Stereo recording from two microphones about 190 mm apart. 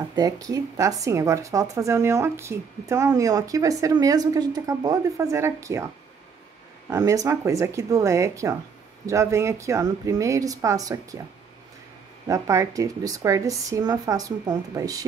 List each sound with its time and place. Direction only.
0.1 s speech: 20° right (ahead or behind)
6.9 s speech: 15° right (ahead or behind)
12.3 s speech: 15° right (ahead or behind)